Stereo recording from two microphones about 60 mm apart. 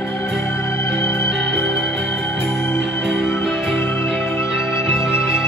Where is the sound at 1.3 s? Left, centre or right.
Centre.